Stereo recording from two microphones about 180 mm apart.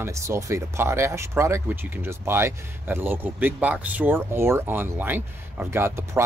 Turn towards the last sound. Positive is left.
turn(degrees=-15)  # may be behind; listen again after turning